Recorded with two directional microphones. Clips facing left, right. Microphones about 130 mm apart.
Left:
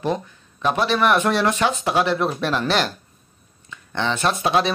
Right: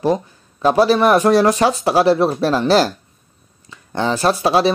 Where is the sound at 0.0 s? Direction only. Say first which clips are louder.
Right 6 dB; 35° right (ahead or behind).